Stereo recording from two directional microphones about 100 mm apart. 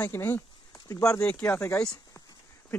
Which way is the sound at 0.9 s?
30° left (ahead or behind).